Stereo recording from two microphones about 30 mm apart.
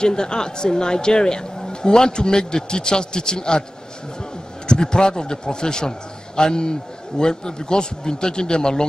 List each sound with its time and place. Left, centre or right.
0.0 s a man's voice: left
4.6 s a man's voice: left